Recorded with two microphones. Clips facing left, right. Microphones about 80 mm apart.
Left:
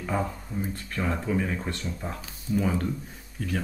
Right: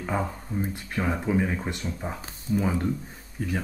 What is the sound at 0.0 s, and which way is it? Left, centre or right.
Speech, centre.